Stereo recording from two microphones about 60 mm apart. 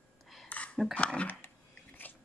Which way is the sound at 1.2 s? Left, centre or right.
Left.